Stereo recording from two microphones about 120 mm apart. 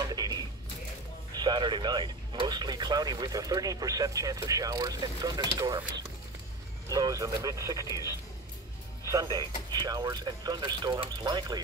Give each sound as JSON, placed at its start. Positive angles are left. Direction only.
{"t": 0.0, "sound": "music", "side_deg": -30}
{"t": 1.3, "sound": "speech", "side_deg": -35}
{"t": 6.9, "sound": "speech", "side_deg": -30}